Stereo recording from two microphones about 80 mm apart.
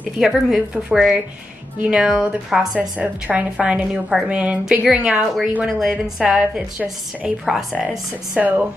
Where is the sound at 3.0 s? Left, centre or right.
Centre.